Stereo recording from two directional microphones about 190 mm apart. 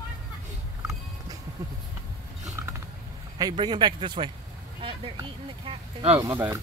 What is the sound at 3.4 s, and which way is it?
Speech, 20° right (ahead or behind).